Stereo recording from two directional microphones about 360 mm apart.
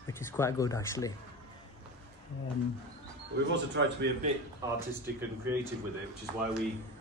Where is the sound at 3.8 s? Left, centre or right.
Right.